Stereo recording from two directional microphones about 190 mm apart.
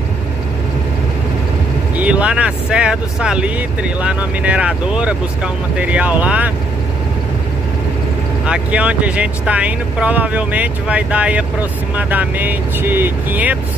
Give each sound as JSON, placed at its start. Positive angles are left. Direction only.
{"t": 2.0, "sound": "speech", "side_deg": -5}
{"t": 8.5, "sound": "speech", "side_deg": -5}